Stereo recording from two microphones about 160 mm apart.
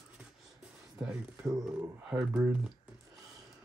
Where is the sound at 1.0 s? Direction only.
5° right (ahead or behind).